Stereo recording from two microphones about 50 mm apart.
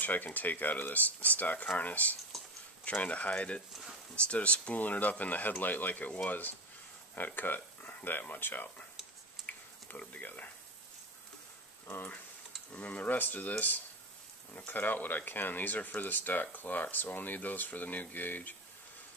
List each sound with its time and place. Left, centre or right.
0.0 s speech: left
9.5 s a sound: left
11.9 s speech: left